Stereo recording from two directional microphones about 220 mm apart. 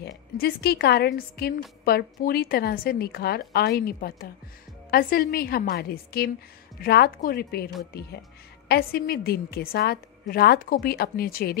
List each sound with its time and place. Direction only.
0.0 s a woman's voice: 45° left (ahead or behind)